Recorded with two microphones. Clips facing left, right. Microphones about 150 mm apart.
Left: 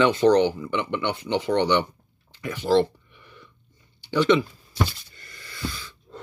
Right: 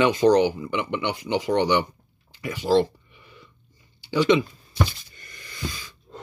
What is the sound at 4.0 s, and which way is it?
Speech, 10° right (ahead or behind).